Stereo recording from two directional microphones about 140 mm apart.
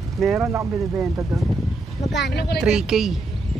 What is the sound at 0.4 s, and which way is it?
Speech, 20° right (ahead or behind).